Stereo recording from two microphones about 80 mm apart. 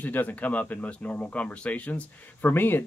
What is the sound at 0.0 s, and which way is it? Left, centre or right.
Speech, left.